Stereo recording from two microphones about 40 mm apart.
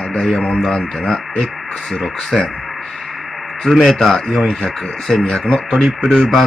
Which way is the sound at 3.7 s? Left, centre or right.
Centre.